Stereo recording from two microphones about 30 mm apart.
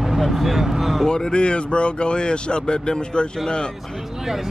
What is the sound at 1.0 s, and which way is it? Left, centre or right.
Speech, left.